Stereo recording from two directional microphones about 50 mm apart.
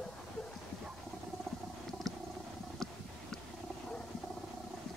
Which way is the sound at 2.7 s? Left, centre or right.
Centre.